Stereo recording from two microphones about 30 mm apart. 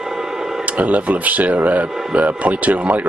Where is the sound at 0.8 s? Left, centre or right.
Right.